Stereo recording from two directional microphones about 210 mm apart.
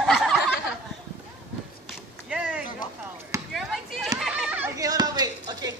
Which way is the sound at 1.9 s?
5° right (ahead or behind).